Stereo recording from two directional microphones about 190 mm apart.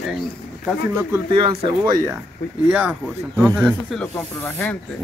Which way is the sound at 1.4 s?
25° right (ahead or behind).